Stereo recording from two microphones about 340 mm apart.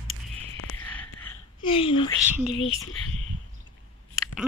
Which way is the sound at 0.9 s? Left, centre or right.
Centre.